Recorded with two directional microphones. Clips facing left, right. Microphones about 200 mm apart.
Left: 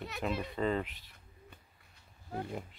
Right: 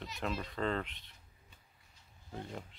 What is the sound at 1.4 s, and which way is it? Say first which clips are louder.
Wild animals: left 8 dB; 60° left (ahead or behind).